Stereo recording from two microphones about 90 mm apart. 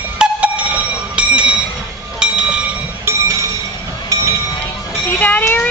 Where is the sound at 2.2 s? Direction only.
10° right (ahead or behind).